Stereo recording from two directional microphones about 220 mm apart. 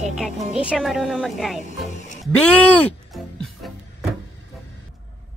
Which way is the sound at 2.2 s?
5° left (ahead or behind).